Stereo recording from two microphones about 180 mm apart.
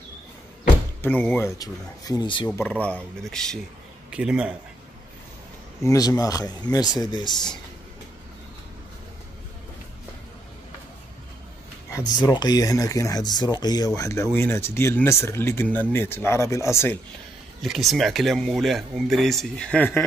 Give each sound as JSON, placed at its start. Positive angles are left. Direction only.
{"t": 1.0, "sound": "speech", "side_deg": 10}
{"t": 2.5, "sound": "speech", "side_deg": 10}
{"t": 5.9, "sound": "speech", "side_deg": 20}
{"t": 11.9, "sound": "speech", "side_deg": 20}
{"t": 17.6, "sound": "speech", "side_deg": 0}